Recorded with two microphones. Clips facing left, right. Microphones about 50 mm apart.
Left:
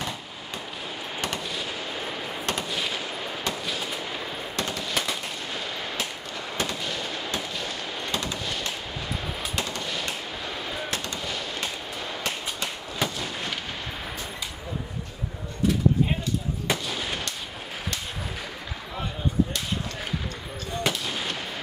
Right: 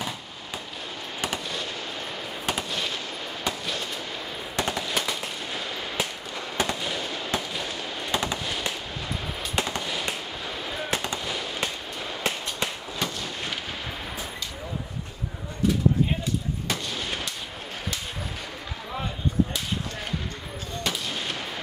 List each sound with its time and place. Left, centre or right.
1.2 s fireworks: centre
4.6 s machine gun: centre
4.9 s fireworks: centre
8.1 s fireworks: centre
9.6 s fireworks: centre
13.0 s artillery fire: centre
16.6 s fireworks: centre
20.9 s fireworks: centre